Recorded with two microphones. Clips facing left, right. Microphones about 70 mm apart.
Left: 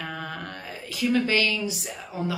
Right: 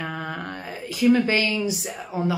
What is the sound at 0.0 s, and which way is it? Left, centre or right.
A woman's voice, right.